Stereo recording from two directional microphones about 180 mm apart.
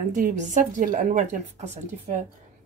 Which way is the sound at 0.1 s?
45° right (ahead or behind).